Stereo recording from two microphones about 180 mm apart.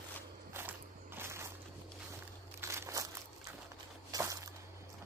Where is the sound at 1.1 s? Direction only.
15° right (ahead or behind).